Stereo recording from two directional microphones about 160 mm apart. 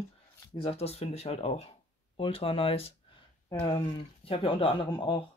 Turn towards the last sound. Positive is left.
turn(degrees=30)  # may be behind; listen again after turning